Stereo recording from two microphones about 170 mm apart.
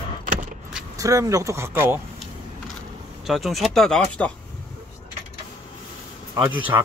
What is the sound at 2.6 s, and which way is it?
Keys jangling, centre (ahead or behind).